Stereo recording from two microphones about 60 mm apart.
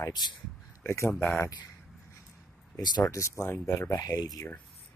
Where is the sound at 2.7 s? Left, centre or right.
Left.